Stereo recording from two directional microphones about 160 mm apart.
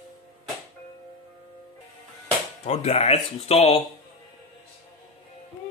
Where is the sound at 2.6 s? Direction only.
45° left (ahead or behind).